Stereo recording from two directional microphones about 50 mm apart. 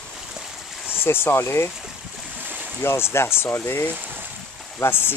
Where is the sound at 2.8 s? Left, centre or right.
Left.